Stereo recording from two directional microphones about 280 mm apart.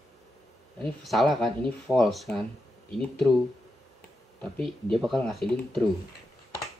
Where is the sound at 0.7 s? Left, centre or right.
Centre.